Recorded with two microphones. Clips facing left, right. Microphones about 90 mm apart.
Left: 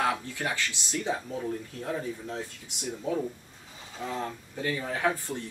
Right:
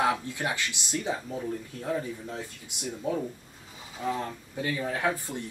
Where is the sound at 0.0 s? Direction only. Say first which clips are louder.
Right 2 dB; 20° right (ahead or behind).